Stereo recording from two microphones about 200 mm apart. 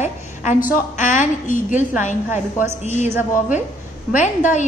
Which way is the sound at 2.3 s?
10° right (ahead or behind).